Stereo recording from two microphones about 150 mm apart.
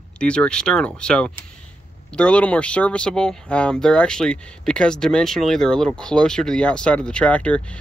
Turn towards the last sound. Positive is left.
turn(degrees=10)  # may be behind; listen again after turning